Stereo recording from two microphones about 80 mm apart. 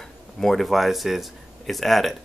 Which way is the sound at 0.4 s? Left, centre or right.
Centre.